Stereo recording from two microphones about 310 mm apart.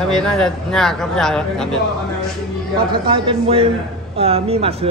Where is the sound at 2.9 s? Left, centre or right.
Centre.